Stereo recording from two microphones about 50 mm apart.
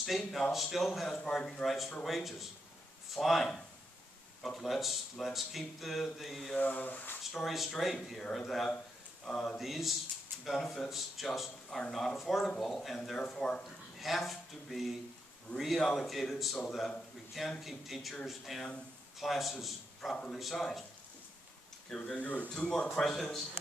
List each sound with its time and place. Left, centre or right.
0.0 s speech: centre
6.6 s speech: left
7.3 s speech: centre
9.6 s speech: centre
13.7 s a man's voice: centre
21.8 s speech: centre
22.1 s speech: left
22.5 s speech: centre
22.8 s speech: centre